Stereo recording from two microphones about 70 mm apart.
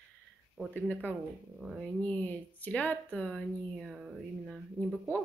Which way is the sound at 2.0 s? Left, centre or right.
Left.